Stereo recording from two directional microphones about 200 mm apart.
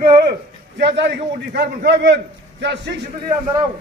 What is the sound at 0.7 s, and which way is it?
A man's voice, 60° right (ahead or behind).